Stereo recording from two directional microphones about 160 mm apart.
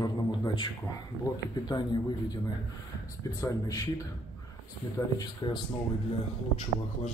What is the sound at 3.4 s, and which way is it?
Speech, 20° left (ahead or behind).